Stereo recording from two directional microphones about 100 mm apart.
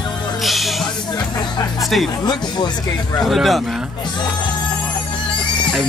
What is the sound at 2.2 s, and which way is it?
Speech, 45° left (ahead or behind).